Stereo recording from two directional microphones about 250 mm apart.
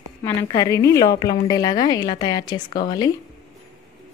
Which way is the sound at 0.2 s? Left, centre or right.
Centre.